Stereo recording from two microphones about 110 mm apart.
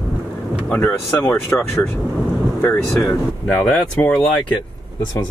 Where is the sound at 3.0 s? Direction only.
5° left (ahead or behind).